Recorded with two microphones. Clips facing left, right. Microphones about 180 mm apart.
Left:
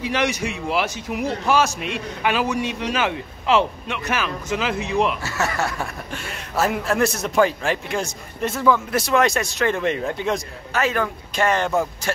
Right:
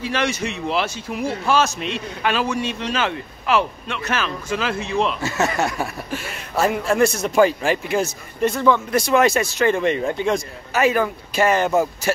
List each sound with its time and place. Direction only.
0.0 s a man's voice: 15° left (ahead or behind)
5.2 s speech: 20° right (ahead or behind)
6.1 s a man's voice: centre (ahead or behind)